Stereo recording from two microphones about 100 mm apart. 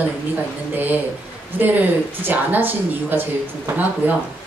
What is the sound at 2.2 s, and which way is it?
Speech, 20° right (ahead or behind).